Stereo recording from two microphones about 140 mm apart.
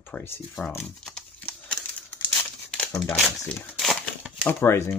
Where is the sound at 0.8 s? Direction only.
10° left (ahead or behind).